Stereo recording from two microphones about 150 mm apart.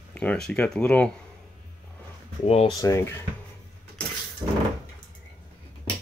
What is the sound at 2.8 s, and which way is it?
Speech, 20° left (ahead or behind).